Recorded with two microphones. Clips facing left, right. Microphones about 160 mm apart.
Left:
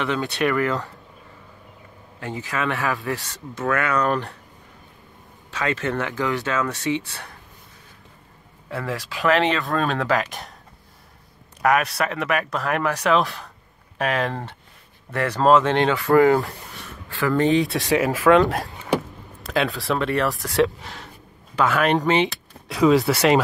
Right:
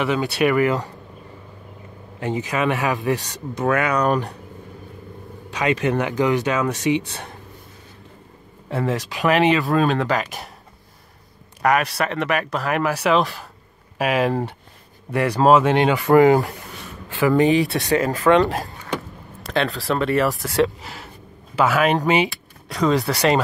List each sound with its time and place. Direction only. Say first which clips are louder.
0.0 s speech: right 3 dB; 10° right (ahead or behind)
2.1 s speech: right 5 dB; 20° right (ahead or behind)
5.5 s speech: right 4 dB; 15° right (ahead or behind)
8.6 s speech: right 5 dB; 25° right (ahead or behind); by 10.5 s centre (ahead or behind)
11.6 s speech: right 1 dB; centre (ahead or behind); by 17.5 s 15° right (ahead or behind)
17.5 s speech: right 1 dB; centre (ahead or behind)